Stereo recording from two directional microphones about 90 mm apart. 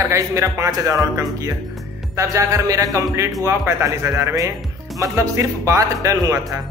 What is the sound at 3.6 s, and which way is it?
Speech, 25° right (ahead or behind).